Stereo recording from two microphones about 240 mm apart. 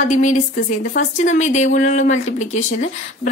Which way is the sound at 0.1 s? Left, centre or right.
Left.